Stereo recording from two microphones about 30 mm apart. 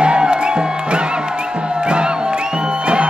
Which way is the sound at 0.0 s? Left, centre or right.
Right.